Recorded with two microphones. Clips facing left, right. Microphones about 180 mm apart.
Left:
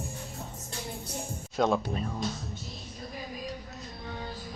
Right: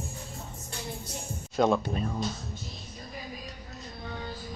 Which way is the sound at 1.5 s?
Centre (ahead or behind).